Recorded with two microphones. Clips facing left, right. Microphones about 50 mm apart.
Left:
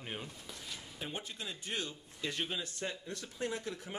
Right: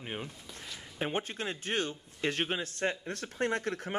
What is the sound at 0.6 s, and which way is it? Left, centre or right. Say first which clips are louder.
Speech: right 9 dB; right.